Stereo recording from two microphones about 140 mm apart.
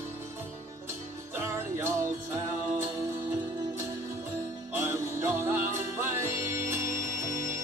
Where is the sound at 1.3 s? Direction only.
15° right (ahead or behind).